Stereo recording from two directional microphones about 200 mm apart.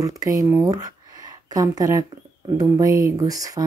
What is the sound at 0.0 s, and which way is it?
Speech, 15° right (ahead or behind).